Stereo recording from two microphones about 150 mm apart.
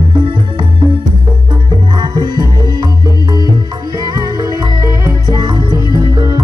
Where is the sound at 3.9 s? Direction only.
25° right (ahead or behind).